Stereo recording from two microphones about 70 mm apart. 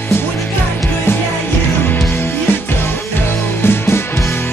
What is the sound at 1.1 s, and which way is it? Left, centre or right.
Music, left.